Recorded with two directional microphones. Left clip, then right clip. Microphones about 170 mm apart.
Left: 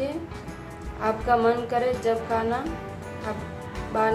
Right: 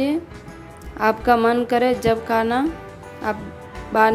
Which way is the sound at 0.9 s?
55° right (ahead or behind).